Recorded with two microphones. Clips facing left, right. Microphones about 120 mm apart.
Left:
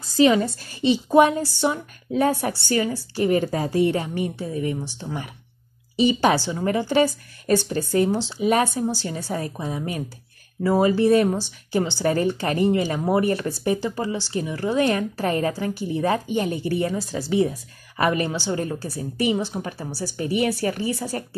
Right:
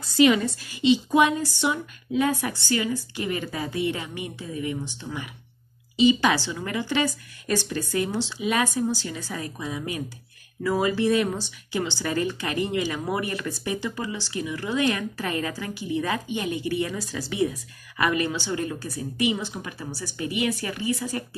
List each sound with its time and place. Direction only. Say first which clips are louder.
0.1 s speech: left 2 dB; 30° left (ahead or behind)
6.4 s speech: left 6 dB; 30° left (ahead or behind)
10.6 s speech: left 5 dB; 30° left (ahead or behind)